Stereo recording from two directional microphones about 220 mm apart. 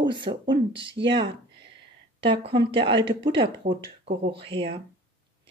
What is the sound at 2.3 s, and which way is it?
Speech, 25° right (ahead or behind).